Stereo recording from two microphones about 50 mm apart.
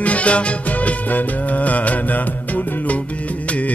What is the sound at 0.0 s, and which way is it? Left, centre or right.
Music, left.